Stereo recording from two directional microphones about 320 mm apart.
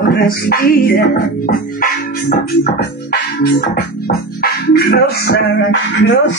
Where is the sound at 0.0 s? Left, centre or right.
Left.